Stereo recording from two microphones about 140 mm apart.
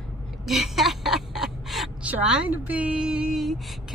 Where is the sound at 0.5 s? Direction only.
Centre (ahead or behind).